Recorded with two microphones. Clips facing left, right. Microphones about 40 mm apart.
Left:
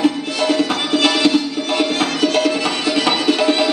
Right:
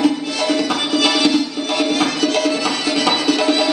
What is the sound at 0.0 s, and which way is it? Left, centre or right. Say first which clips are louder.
Music: even; left.